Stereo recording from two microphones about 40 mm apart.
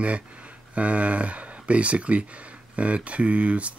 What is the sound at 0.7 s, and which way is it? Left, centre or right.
Speech, right.